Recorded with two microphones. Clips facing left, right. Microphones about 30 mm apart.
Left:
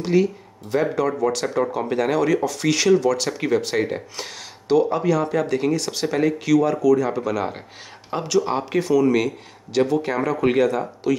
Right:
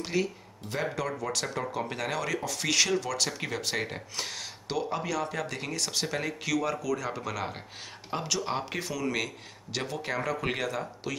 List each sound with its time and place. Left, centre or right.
0.0 s speech: centre